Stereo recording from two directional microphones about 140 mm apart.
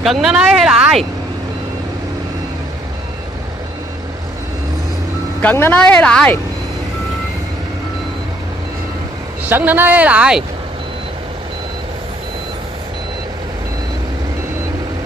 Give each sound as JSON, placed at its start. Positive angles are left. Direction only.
{"t": 0.0, "sound": "speech", "side_deg": -5}
{"t": 5.4, "sound": "speech", "side_deg": 10}
{"t": 9.4, "sound": "a man's voice", "side_deg": -10}